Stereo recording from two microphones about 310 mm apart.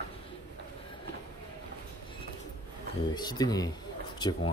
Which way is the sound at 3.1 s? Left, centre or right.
Centre.